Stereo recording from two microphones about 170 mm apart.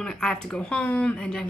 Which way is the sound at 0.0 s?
5° left (ahead or behind).